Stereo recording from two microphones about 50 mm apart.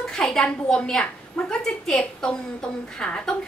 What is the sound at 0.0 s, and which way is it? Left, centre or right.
A woman's voice, centre.